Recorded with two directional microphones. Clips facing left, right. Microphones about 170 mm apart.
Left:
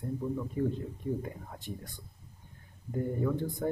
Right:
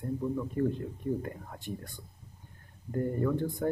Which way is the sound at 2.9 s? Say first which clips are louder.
Right 2 dB; 5° left (ahead or behind).